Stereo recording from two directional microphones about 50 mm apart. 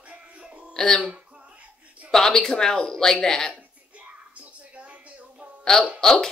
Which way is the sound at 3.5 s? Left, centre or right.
Right.